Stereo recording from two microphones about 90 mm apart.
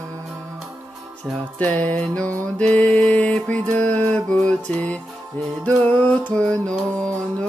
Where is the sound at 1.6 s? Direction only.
15° left (ahead or behind).